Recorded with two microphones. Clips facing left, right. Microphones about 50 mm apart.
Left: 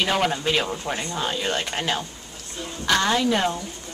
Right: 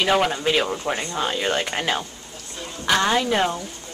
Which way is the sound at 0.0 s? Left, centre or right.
Centre.